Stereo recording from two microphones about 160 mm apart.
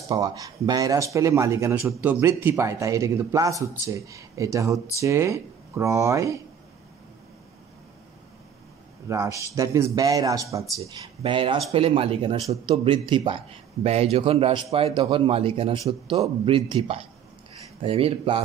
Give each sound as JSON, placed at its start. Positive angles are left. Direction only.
{"t": 0.1, "sound": "a man's voice", "side_deg": -20}
{"t": 9.1, "sound": "a man's voice", "side_deg": -20}
{"t": 11.2, "sound": "a man's voice", "side_deg": -30}